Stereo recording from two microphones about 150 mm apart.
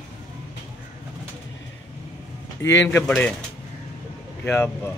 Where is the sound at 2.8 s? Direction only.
10° left (ahead or behind).